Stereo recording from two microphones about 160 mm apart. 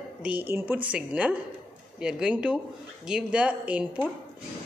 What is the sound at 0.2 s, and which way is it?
Speech, 10° right (ahead or behind).